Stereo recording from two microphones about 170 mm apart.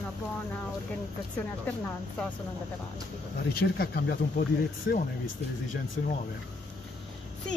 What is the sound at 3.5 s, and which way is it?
Speech, 65° left (ahead or behind).